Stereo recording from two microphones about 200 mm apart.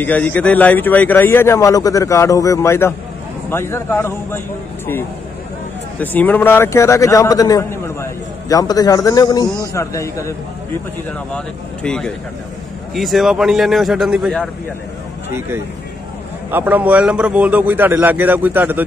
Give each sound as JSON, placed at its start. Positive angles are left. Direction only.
{"t": 0.0, "sound": "a man's voice", "side_deg": 10}
{"t": 5.9, "sound": "a man's voice", "side_deg": 10}
{"t": 11.3, "sound": "a man's voice", "side_deg": 5}
{"t": 16.4, "sound": "a man's voice", "side_deg": -10}